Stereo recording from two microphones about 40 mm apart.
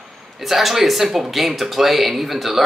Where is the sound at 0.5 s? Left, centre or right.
Centre.